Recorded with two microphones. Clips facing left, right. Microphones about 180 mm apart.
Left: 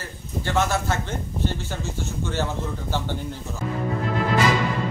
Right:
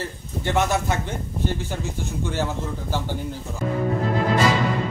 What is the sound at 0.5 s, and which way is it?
Speech, 20° right (ahead or behind).